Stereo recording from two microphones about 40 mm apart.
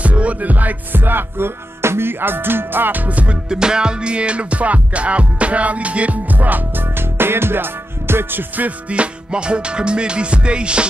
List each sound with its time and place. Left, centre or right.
0.0 s music: right
3.4 s music: centre; by 6.1 s right
6.3 s music: right
7.0 s music: right
8.6 s music: right